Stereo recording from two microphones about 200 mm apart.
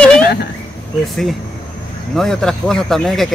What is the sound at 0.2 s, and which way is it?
Insect, 55° left (ahead or behind).